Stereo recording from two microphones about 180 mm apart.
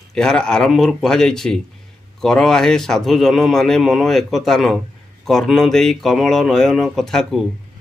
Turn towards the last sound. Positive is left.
turn(degrees=0)  # may be behind; listen again after turning